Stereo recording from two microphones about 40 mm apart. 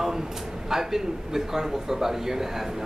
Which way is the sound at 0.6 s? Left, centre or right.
Centre.